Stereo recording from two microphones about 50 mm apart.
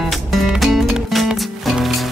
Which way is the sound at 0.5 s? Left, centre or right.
Centre.